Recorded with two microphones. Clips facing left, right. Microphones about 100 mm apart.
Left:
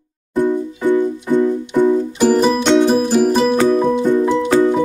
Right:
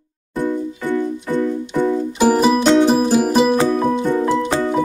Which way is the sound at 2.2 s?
10° right (ahead or behind).